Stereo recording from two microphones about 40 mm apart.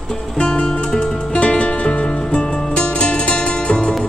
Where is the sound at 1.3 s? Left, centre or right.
Left.